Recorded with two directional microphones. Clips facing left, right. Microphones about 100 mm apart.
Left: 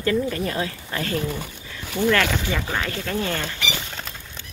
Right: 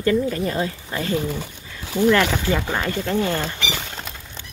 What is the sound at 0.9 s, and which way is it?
Speech, 10° right (ahead or behind).